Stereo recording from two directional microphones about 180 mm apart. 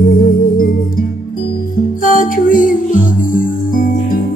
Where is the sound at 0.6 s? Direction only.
50° left (ahead or behind).